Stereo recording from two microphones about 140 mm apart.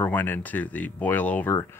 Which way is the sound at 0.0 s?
15° left (ahead or behind).